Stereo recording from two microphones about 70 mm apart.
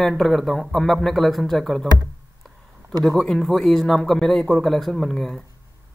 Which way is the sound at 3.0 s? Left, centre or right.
Centre.